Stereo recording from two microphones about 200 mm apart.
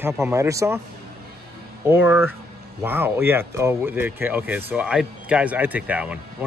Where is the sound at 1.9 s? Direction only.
10° right (ahead or behind).